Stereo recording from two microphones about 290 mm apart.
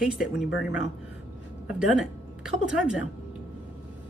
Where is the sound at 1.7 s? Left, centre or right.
Centre.